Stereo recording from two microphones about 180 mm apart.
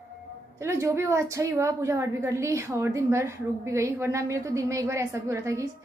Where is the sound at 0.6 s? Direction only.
15° right (ahead or behind).